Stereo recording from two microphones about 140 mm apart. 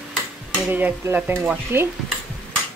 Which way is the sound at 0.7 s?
15° right (ahead or behind).